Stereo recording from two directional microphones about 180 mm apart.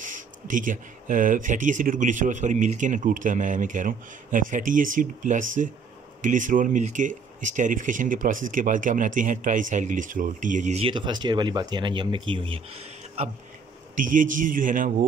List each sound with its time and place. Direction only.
0.0 s speech: 45° right (ahead or behind); by 12.6 s 30° right (ahead or behind)
13.9 s speech: 45° right (ahead or behind)